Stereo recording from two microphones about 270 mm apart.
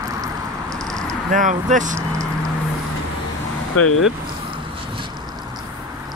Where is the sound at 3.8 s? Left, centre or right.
Left.